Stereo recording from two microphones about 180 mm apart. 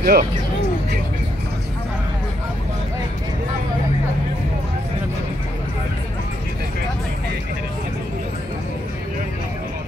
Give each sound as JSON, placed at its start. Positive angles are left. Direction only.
{"t": 0.0, "sound": "speech", "side_deg": -55}